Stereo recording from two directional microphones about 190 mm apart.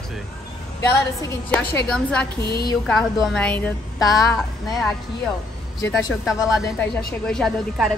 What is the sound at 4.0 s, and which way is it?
Speech, 20° left (ahead or behind).